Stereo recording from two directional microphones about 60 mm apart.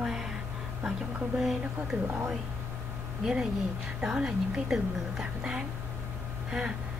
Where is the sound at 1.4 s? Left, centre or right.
Centre.